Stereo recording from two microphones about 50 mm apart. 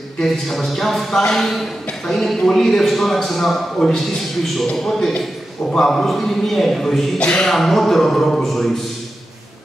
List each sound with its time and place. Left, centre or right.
0.2 s a man's voice: centre
7.2 s speech: left
7.4 s a man's voice: centre